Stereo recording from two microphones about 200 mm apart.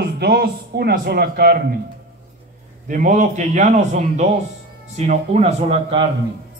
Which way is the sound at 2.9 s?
40° right (ahead or behind).